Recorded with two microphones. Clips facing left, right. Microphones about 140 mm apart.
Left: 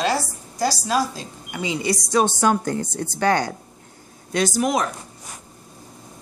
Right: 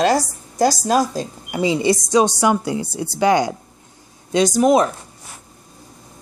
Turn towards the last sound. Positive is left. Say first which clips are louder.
# right 7 dB
turn(degrees=-30)  # may be behind; listen again after turning